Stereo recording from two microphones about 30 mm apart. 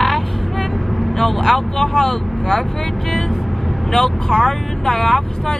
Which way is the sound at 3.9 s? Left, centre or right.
Centre.